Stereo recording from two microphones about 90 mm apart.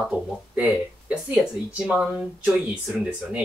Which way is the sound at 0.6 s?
15° right (ahead or behind).